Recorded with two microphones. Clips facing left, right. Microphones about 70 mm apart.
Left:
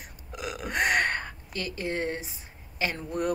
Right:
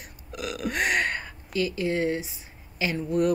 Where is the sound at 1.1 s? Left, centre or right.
Left.